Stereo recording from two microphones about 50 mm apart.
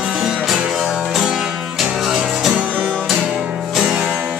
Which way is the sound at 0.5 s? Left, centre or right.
Centre.